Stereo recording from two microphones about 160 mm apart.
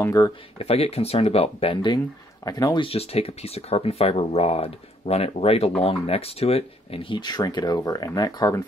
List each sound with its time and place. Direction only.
0.0 s speech: 20° left (ahead or behind)
0.6 s speech: 40° left (ahead or behind)